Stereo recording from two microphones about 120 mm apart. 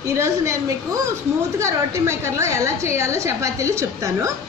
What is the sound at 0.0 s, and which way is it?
A woman's voice, 25° right (ahead or behind).